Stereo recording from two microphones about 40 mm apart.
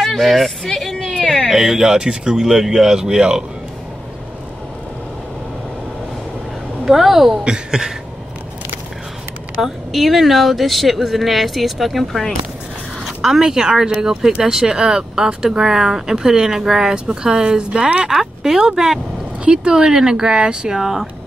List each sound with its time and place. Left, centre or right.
0.0 s a sound: centre
1.5 s speech: centre
2.4 s speech: centre
6.8 s a woman's voice: centre
7.4 s speech: centre
9.6 s speech: centre
13.2 s speech: centre
16.9 s speech: right
18.1 s speech: centre
19.5 s speech: right